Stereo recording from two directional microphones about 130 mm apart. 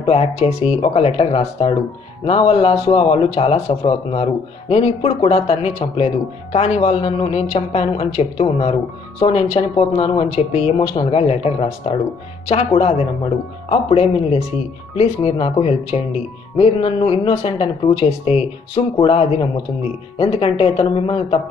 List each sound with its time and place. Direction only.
0.0 s speech: 50° left (ahead or behind)